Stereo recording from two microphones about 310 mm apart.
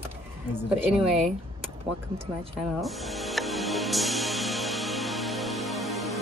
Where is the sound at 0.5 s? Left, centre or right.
Centre.